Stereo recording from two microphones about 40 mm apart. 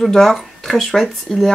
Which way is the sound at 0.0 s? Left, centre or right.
Centre.